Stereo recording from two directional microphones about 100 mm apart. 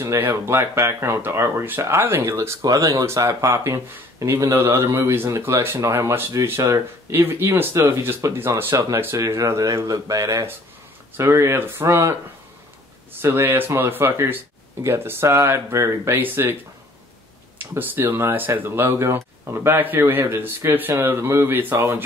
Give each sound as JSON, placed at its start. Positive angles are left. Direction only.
{"t": 0.0, "sound": "speech", "side_deg": -25}
{"t": 13.2, "sound": "speech", "side_deg": -25}
{"t": 17.6, "sound": "speech", "side_deg": -20}